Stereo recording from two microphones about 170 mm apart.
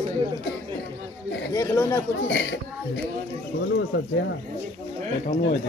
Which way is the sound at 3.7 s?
85° left.